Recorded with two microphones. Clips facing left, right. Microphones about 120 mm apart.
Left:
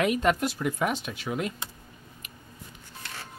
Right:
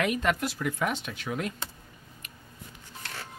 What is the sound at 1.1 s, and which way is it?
Speech, 5° left (ahead or behind).